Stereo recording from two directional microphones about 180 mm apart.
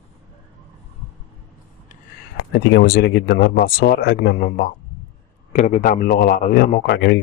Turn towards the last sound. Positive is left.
turn(degrees=65)  # may be behind; listen again after turning